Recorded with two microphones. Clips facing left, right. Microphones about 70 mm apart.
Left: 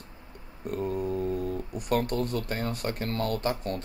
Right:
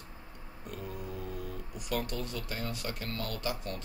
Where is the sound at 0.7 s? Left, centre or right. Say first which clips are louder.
Left 12 dB; left.